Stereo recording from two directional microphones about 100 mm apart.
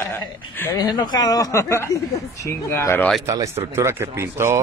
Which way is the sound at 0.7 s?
45° left (ahead or behind).